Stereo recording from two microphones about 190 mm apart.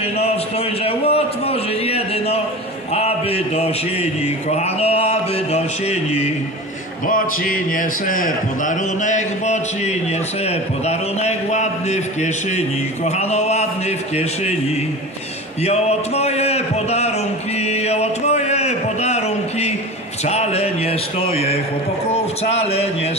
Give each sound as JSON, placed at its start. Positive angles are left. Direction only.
{"t": 0.2, "sound": "a sound", "side_deg": 30}
{"t": 2.9, "sound": "speech", "side_deg": 35}
{"t": 7.1, "sound": "a man's voice", "side_deg": 45}
{"t": 15.6, "sound": "speech", "side_deg": 35}
{"t": 17.6, "sound": "a sound", "side_deg": 35}
{"t": 22.1, "sound": "a man's voice", "side_deg": 35}